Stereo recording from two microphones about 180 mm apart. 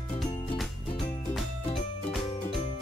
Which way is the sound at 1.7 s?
Centre (ahead or behind).